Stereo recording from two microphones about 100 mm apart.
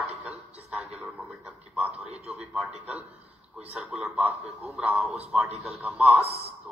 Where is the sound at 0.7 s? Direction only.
15° right (ahead or behind).